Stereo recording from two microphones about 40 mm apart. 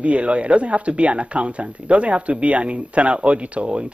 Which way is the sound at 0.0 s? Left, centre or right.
Right.